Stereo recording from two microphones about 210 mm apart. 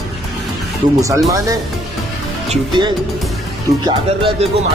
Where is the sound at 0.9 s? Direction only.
15° right (ahead or behind).